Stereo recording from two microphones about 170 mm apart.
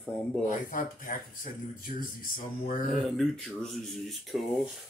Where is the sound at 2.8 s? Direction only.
Centre (ahead or behind).